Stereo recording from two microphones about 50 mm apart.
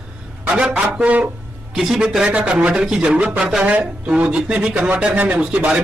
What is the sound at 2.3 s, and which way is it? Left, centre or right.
Speech, right.